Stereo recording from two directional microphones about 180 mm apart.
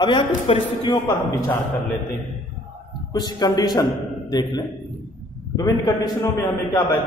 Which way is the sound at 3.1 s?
20° left (ahead or behind).